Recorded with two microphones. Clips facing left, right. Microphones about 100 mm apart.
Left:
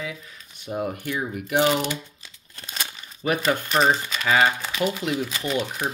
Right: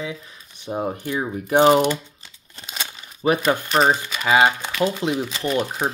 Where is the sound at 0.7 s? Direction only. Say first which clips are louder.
Right 2 dB; 30° right (ahead or behind).